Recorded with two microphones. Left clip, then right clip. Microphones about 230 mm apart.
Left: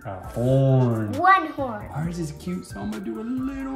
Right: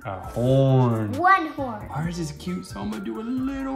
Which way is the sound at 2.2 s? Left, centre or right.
Centre.